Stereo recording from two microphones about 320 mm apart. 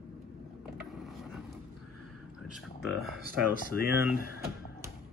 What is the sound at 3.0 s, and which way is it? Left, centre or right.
Speech, right.